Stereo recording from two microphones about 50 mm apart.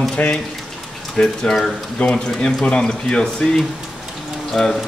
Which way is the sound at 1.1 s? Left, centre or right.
Centre.